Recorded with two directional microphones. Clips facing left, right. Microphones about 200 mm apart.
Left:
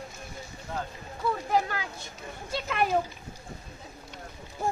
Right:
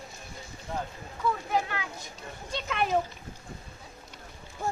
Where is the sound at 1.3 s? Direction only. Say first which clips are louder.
Left 2 dB; 35° left (ahead or behind).